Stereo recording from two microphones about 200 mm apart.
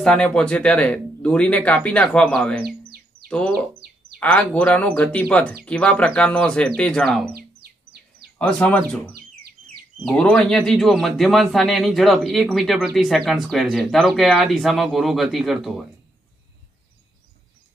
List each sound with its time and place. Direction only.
0.0 s speech: 5° left (ahead or behind)
2.6 s bird: 50° right (ahead or behind)
3.3 s a sound: 5° left (ahead or behind)
3.8 s bird: 50° right (ahead or behind)
4.2 s speech: 5° left (ahead or behind)
7.3 s music: 50° right (ahead or behind)
8.4 s speech: 5° left (ahead or behind)
9.1 s music: 50° right (ahead or behind)
10.0 s speech: 5° left (ahead or behind)